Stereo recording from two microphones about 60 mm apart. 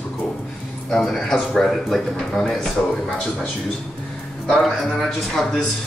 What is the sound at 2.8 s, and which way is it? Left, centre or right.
Speech, centre.